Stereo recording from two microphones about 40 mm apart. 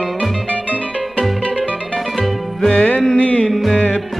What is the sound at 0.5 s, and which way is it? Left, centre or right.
Music, left.